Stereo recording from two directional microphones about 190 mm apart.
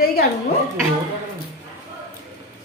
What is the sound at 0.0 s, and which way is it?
Speech, 55° left (ahead or behind).